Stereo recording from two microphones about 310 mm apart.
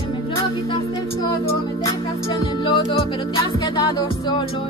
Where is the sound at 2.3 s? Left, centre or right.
Centre.